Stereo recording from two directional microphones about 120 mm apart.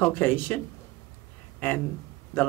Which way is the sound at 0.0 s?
20° left (ahead or behind).